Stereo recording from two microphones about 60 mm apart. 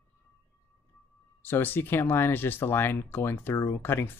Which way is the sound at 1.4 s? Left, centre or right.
Left.